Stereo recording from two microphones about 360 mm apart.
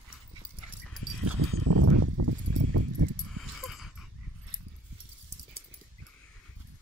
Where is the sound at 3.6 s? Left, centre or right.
Centre.